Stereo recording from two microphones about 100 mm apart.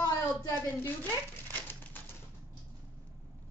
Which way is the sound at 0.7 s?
20° left (ahead or behind).